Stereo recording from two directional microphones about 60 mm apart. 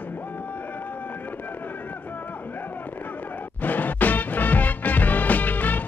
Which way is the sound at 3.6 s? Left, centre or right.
Left.